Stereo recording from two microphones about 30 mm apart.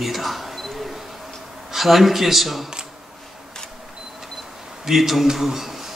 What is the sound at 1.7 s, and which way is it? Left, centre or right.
Speech, centre.